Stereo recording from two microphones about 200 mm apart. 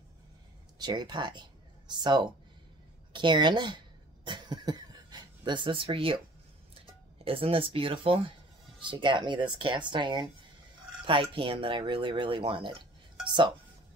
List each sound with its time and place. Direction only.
0.7 s speech: 20° right (ahead or behind)
3.1 s cough: 25° right (ahead or behind)
7.2 s speech: 30° right (ahead or behind)